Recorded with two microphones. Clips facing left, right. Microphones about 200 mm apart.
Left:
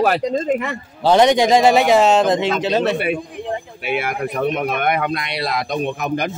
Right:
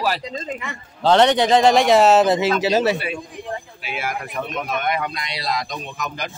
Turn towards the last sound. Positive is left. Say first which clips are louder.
# left 9 dB
turn(degrees=60)  # may be behind; listen again after turning